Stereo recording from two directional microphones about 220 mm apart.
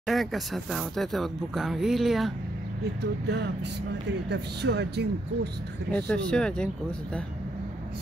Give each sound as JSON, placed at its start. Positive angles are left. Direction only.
{"t": 0.0, "sound": "speech", "side_deg": 0}
{"t": 2.8, "sound": "speech", "side_deg": -50}
{"t": 5.9, "sound": "speech", "side_deg": 5}